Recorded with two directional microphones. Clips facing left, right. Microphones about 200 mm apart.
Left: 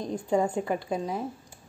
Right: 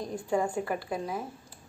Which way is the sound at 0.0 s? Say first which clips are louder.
Left 3 dB; 20° left (ahead or behind).